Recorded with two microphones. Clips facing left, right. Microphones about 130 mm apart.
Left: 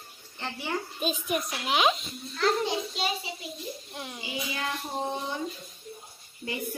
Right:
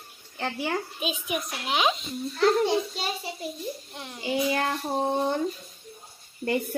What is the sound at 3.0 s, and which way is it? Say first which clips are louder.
Child singing: even; 45° right (ahead or behind).